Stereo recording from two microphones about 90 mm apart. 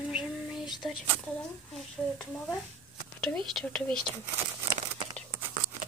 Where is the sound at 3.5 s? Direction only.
5° left (ahead or behind).